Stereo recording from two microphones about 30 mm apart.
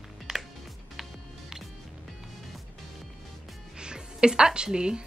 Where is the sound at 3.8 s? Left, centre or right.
Right.